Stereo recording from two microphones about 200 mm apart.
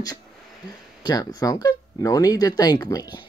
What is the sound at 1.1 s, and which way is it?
Speech, 20° left (ahead or behind).